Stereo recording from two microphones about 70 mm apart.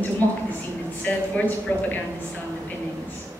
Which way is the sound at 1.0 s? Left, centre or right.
Left.